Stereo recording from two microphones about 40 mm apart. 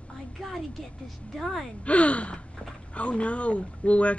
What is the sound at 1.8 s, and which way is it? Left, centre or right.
Speech, left.